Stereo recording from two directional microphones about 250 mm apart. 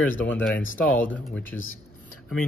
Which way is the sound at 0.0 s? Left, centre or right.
Centre.